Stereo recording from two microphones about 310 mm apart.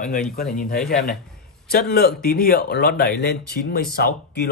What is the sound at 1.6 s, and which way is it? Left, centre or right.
Speech, left.